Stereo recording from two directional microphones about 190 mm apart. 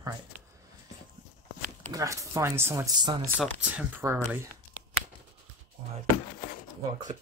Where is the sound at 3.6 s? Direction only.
10° right (ahead or behind).